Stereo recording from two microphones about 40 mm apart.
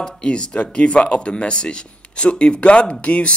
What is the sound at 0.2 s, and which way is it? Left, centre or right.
Speech, left.